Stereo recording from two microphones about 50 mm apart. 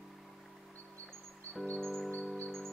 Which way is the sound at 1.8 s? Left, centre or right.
Centre.